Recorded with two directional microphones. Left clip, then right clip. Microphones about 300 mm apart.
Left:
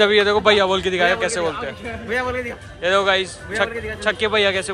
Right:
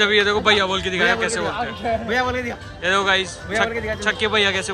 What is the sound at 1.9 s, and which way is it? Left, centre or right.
Speech, right.